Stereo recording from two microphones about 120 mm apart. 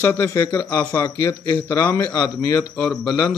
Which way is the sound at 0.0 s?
20° left (ahead or behind).